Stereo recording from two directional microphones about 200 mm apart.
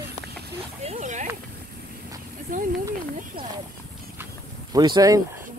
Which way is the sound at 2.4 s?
45° right (ahead or behind).